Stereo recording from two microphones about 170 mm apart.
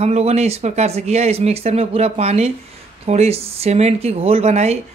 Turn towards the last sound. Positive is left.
turn(degrees=-40)  # may be behind; listen again after turning